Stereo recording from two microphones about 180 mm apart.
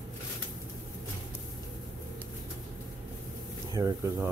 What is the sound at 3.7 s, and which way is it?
Speech, 15° right (ahead or behind).